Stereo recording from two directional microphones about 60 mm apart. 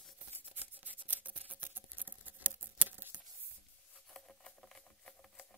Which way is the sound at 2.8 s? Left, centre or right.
Right.